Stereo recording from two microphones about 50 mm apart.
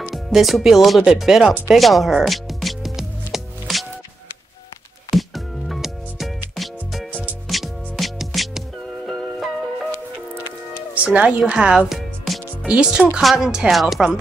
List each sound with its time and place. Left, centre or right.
0.1 s speech: centre
1.7 s music: centre
5.1 s music: centre
11.1 s speech: right
11.5 s speech: centre
13.7 s speech: centre